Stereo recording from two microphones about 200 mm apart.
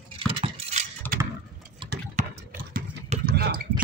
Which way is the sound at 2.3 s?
45° right (ahead or behind).